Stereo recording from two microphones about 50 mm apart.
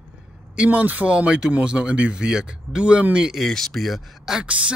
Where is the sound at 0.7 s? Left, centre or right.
Right.